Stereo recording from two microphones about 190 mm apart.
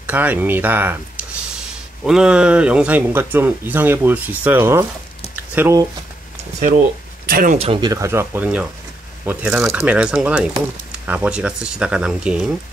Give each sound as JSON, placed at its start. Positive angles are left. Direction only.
{"t": 0.0, "sound": "speech", "side_deg": -10}
{"t": 5.3, "sound": "a sound", "side_deg": -10}
{"t": 7.2, "sound": "speech", "side_deg": -50}
{"t": 7.5, "sound": "speech", "side_deg": -30}